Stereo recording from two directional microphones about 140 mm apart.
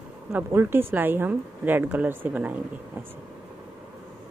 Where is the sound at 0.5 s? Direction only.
15° right (ahead or behind).